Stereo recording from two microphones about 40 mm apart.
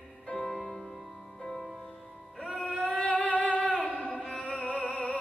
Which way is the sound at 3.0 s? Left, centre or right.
Left.